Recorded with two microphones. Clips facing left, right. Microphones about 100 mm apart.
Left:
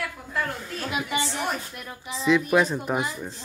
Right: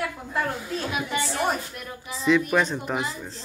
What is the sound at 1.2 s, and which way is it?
A woman's voice, 5° right (ahead or behind).